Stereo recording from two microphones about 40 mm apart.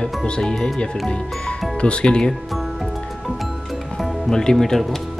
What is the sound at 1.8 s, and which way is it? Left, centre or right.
Speech, left.